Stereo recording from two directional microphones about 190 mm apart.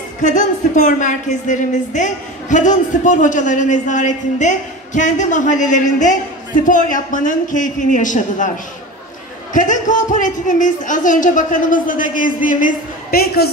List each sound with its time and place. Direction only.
0.2 s speech: 40° left (ahead or behind)
9.5 s speech: 40° left (ahead or behind)